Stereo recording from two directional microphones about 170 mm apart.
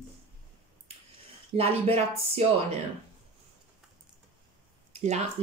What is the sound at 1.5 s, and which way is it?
Speech, 35° right (ahead or behind).